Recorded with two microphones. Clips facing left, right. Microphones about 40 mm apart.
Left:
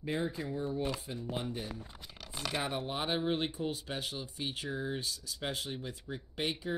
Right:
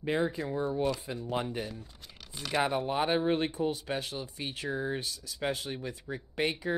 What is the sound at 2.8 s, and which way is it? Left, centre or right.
Speech, right.